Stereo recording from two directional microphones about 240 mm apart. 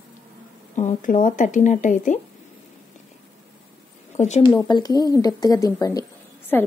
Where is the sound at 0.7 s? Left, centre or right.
Left.